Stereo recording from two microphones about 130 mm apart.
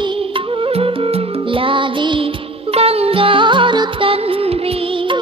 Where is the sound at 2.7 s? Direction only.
50° right (ahead or behind).